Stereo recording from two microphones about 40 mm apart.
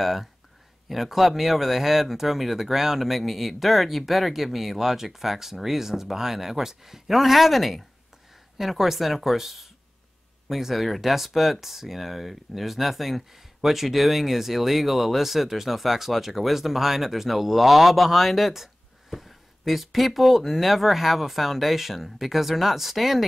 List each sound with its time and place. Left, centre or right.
0.0 s speech: centre